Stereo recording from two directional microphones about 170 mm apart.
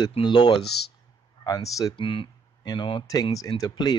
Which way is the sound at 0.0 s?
25° left (ahead or behind).